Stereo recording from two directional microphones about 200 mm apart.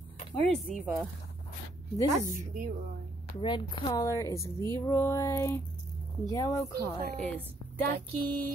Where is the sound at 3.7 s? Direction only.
20° left (ahead or behind).